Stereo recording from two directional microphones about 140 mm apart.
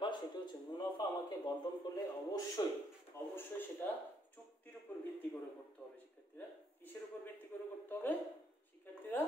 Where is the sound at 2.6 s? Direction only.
25° left (ahead or behind).